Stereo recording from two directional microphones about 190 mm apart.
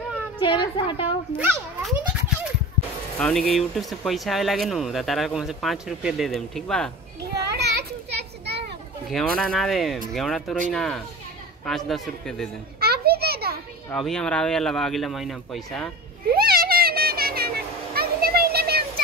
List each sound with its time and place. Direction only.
0.4 s a woman's voice: 25° left (ahead or behind)
1.5 s a sound: centre (ahead or behind)
3.2 s speech: 5° left (ahead or behind)
7.5 s children playing: 60° right (ahead or behind)
9.0 s speech: 5° left (ahead or behind)
12.8 s children playing: 55° right (ahead or behind)
13.9 s speech: 5° left (ahead or behind)
16.3 s children playing: 50° right (ahead or behind)